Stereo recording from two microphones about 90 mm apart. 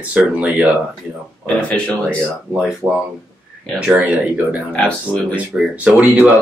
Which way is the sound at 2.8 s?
35° right (ahead or behind).